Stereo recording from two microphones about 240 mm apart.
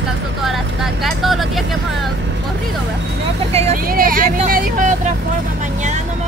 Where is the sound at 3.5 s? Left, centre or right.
Right.